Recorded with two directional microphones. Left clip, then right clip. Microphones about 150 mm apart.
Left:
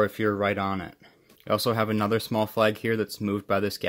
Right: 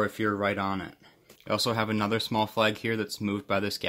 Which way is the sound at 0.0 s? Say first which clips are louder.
Left 3 dB; 35° left (ahead or behind).